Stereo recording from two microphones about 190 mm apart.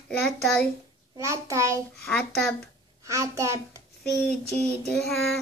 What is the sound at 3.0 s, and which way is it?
Child singing, 15° right (ahead or behind).